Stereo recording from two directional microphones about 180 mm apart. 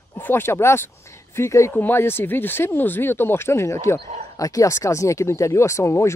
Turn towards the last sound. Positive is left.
turn(degrees=15)  # may be behind; listen again after turning